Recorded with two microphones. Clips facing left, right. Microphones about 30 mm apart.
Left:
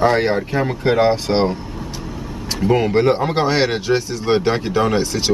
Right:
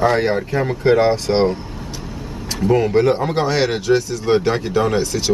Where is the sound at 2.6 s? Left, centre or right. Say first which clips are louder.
Even; left.